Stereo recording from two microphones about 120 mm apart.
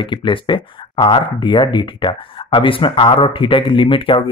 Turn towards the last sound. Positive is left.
turn(degrees=50)  # may be behind; listen again after turning